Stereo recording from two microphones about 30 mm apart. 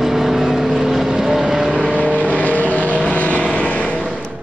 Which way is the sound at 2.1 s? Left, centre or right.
Left.